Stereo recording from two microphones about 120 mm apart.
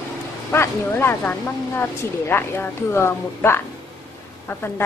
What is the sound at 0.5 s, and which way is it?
Speech, 20° left (ahead or behind).